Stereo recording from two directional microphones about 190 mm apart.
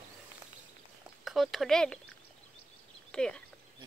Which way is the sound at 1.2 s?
Centre (ahead or behind).